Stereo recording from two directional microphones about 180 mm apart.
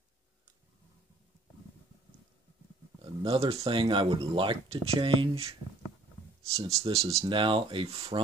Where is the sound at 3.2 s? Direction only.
30° right (ahead or behind).